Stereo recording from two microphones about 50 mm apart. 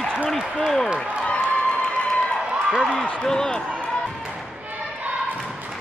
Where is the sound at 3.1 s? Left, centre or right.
Centre.